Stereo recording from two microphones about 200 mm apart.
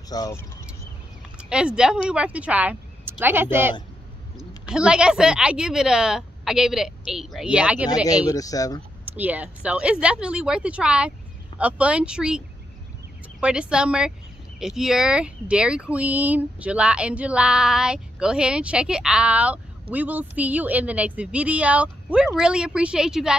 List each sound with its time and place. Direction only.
0.1 s speech: 15° left (ahead or behind)
1.4 s a woman's voice: 5° right (ahead or behind)
7.9 s speech: 20° left (ahead or behind)
9.0 s speech: 10° right (ahead or behind)